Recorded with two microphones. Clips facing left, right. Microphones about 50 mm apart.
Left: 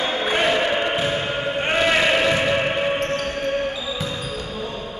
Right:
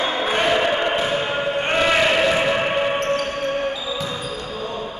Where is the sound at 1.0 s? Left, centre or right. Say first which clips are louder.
Right 1 dB; centre.